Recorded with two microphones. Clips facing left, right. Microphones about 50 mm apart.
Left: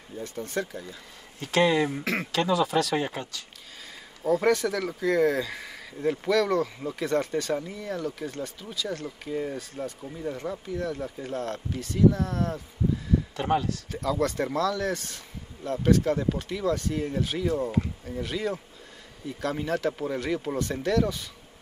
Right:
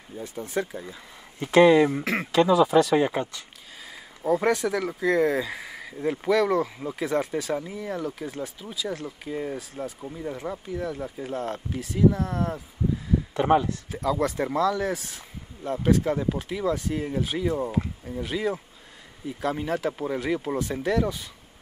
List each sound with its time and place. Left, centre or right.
0.2 s speech: centre; by 3.4 s right
4.2 s speech: centre
13.3 s speech: right
13.8 s speech: centre